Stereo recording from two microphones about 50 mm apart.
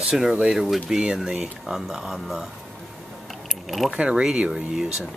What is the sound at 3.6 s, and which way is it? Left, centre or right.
Speech, centre.